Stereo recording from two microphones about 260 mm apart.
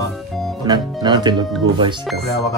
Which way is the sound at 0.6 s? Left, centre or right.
Centre.